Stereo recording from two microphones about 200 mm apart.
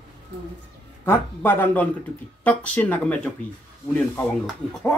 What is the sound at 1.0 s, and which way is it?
Speech, 10° left (ahead or behind).